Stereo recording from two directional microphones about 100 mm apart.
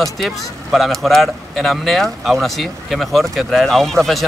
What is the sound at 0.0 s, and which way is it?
Speech, centre (ahead or behind).